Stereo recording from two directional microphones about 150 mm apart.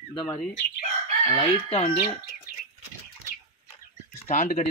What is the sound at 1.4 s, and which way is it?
Speech, 40° left (ahead or behind).